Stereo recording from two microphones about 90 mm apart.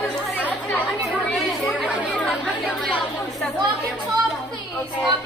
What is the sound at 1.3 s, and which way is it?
Chatter, centre (ahead or behind).